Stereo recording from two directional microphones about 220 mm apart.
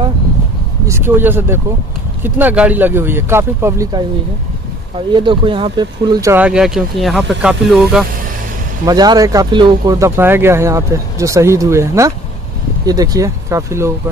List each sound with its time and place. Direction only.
0.8 s speech: 10° right (ahead or behind)
6.3 s speech: 5° right (ahead or behind)
8.8 s speech: 20° right (ahead or behind)